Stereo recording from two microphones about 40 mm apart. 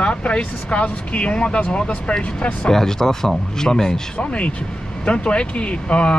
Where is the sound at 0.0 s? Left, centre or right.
Left.